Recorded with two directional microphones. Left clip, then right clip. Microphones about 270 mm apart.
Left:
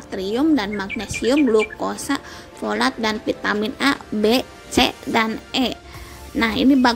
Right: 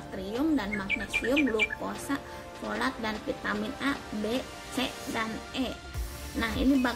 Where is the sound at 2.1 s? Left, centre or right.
Left.